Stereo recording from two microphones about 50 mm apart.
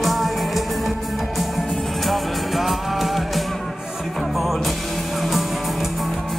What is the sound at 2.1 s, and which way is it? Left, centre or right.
Music, centre.